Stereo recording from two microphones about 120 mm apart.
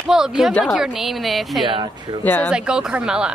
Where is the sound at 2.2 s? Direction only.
15° left (ahead or behind).